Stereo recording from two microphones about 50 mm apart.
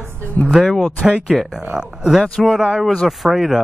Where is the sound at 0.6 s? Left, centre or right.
Centre.